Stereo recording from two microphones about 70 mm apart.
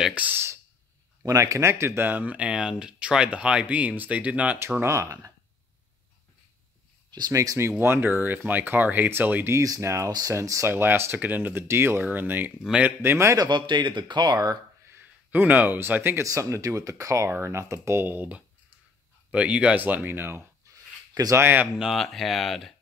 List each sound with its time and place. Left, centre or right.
0.1 s a sound: right
1.2 s speech: right; by 4.6 s centre
4.7 s speech: right
7.1 s a sound: right
7.3 s speech: right
7.8 s speech: right
9.5 s speech: right
13.4 s speech: right
14.9 s speech: right
16.3 s speech: right
18.0 s speech: right
20.7 s a sound: right
21.4 s speech: right
21.9 s speech: centre